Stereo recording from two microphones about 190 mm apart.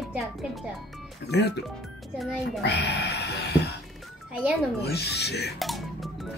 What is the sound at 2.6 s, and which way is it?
Speech, 60° left (ahead or behind).